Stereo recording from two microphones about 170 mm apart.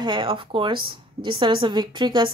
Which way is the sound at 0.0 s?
30° right (ahead or behind).